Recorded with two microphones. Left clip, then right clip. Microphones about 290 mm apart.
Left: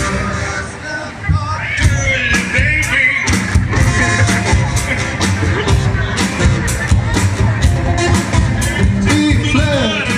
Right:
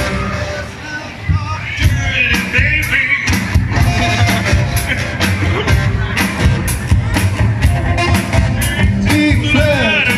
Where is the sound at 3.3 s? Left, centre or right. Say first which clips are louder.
Left 1 dB; right.